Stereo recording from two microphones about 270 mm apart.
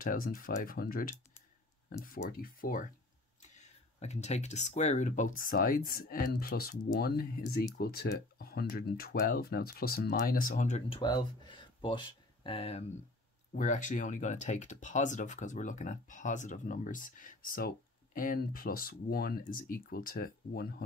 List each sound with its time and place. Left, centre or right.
0.0 s speech: left